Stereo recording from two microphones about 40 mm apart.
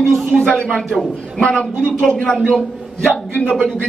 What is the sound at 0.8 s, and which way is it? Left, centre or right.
A man's voice, centre.